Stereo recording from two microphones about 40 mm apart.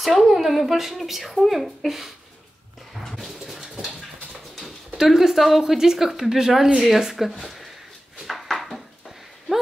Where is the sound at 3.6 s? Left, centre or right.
Right.